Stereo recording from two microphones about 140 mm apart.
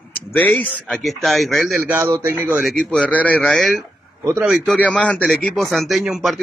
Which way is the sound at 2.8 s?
5° left (ahead or behind).